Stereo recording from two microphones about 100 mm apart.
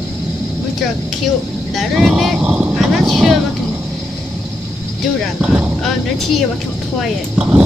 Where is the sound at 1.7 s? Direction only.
5° right (ahead or behind).